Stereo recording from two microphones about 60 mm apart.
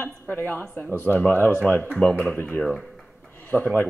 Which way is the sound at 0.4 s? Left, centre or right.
Left.